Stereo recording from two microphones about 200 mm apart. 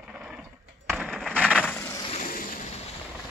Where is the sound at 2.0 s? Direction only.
40° left (ahead or behind).